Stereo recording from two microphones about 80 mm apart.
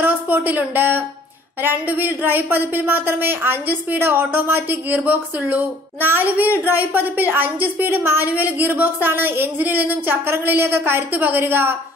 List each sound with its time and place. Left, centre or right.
0.0 s speech: right